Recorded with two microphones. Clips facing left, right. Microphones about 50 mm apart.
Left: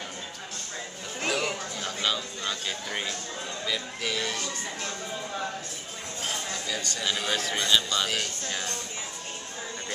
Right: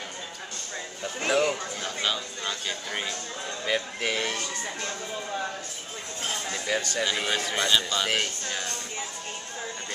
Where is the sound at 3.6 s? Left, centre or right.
Right.